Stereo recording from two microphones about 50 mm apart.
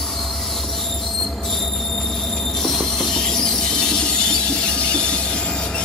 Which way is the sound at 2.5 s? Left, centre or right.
Centre.